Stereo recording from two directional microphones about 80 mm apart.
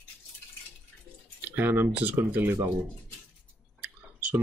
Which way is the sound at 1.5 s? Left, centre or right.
Right.